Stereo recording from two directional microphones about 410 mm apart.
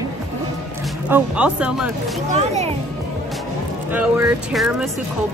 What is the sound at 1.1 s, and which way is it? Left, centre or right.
Speech, centre.